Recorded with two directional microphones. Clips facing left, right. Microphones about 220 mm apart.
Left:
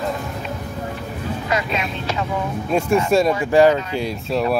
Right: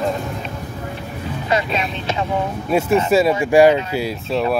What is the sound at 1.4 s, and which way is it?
Speech, 30° right (ahead or behind).